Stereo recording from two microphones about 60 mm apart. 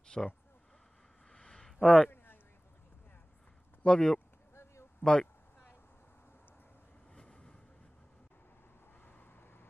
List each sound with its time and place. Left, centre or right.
0.1 s speech: centre
1.3 s a sound: centre
3.8 s speech: centre
7.2 s vehicle: centre
9.0 s vehicle: left